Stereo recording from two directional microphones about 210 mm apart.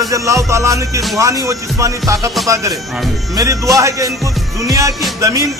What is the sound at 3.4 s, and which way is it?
Music, 15° right (ahead or behind).